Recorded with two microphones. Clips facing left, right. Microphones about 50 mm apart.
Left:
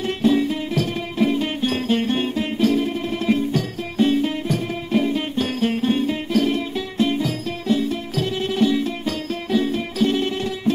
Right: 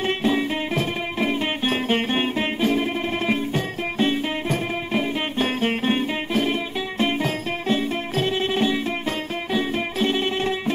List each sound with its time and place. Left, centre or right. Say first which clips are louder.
0.0 s music: left 3 dB; right